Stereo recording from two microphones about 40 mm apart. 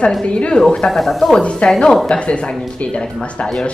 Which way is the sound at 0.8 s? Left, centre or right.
Centre.